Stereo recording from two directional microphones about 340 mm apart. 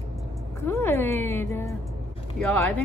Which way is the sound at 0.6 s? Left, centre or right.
Centre.